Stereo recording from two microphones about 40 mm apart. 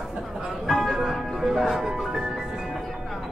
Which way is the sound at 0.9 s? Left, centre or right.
Centre.